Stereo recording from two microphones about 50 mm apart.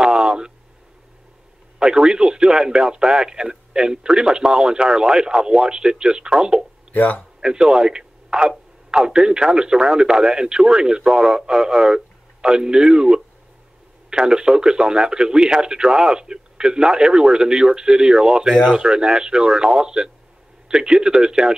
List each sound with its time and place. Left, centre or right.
0.0 s a sound: centre
1.8 s a man's voice: centre
6.9 s speech: left
7.3 s a man's voice: centre